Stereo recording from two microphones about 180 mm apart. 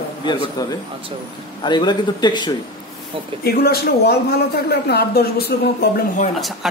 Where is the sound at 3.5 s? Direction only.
60° left (ahead or behind).